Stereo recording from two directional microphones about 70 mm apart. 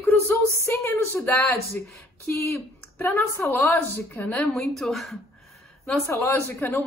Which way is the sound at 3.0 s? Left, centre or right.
Left.